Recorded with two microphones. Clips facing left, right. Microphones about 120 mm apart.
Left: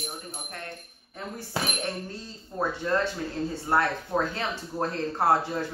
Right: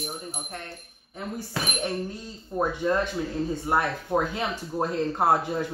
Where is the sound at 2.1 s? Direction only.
15° right (ahead or behind).